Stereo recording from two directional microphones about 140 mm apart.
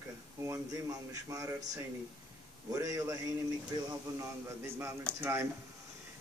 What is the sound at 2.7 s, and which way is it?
A man's voice, 25° right (ahead or behind).